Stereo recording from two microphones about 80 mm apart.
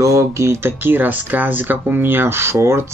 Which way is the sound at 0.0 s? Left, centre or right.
Right.